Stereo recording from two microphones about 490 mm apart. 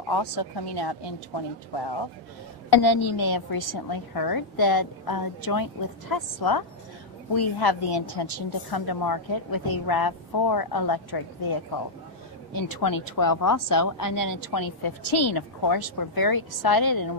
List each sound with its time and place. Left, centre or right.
0.1 s a woman's voice: left
2.7 s a woman's voice: left
3.2 s a woman's voice: left
12.5 s a woman's voice: left